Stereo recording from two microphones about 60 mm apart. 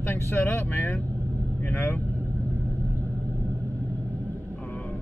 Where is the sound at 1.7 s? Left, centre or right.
Left.